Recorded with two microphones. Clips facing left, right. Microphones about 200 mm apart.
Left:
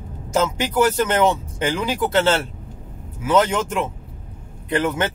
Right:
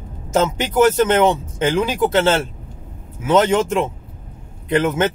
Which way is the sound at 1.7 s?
20° right (ahead or behind).